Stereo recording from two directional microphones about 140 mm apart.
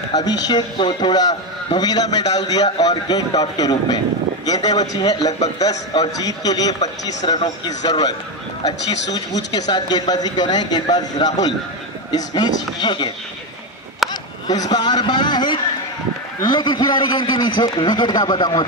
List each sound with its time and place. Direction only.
0.1 s a man's voice: 30° left (ahead or behind)
9.5 s a man's voice: 30° left (ahead or behind)
14.0 s a sound: centre (ahead or behind)
14.5 s a man's voice: 30° left (ahead or behind)